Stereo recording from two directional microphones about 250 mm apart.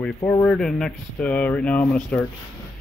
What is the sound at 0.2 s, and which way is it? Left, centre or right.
Speech, centre.